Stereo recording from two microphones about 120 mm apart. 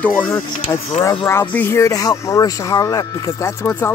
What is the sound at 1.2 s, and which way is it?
Speech, 20° left (ahead or behind).